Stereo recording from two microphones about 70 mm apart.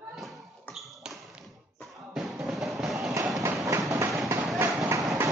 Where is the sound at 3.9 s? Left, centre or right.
Right.